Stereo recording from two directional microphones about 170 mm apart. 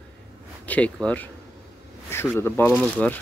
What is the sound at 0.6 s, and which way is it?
Speech, 10° left (ahead or behind).